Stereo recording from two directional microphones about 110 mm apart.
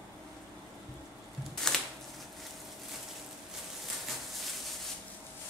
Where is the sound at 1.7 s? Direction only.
5° left (ahead or behind).